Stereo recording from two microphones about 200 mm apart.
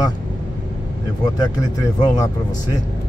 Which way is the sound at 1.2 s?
20° left (ahead or behind).